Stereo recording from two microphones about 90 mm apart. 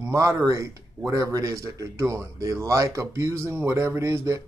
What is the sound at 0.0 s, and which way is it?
A man's voice, 30° right (ahead or behind).